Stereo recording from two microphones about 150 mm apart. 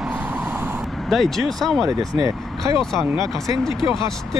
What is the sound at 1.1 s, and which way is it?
Speech, centre (ahead or behind).